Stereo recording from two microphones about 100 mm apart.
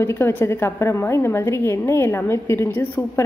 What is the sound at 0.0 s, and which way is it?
A woman's voice, 25° left (ahead or behind).